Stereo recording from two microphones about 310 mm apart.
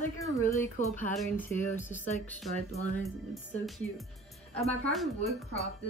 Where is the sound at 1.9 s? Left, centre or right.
Left.